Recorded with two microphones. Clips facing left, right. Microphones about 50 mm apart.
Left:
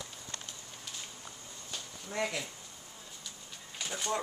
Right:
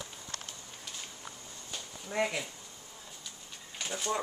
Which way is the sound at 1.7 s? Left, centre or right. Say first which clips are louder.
Right 2 dB; centre.